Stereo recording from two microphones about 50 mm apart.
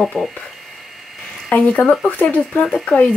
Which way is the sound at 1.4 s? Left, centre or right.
Left.